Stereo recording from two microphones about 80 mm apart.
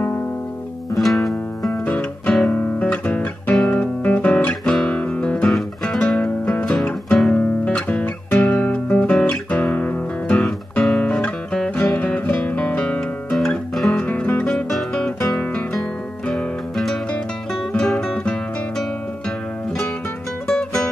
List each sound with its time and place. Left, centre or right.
0.9 s music: centre
1.9 s music: centre
3.7 s guitar: centre
5.5 s music: centre
10.4 s guitar: centre
11.9 s music: centre
13.9 s music: centre